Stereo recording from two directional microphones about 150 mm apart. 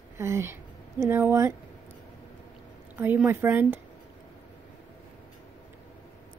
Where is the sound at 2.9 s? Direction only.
10° right (ahead or behind).